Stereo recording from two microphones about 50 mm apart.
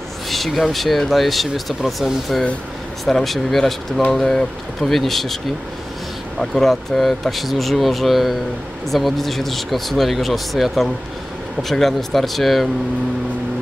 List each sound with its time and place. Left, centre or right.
0.3 s speech: centre
6.4 s speech: centre